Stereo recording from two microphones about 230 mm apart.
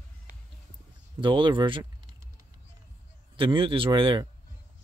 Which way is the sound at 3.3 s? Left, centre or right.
Right.